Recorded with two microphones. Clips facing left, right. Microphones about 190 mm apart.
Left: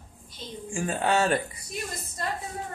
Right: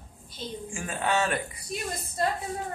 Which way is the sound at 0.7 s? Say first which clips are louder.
Left 3 dB; 35° left (ahead or behind).